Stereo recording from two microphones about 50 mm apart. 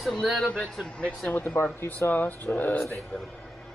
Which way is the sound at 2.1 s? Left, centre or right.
Left.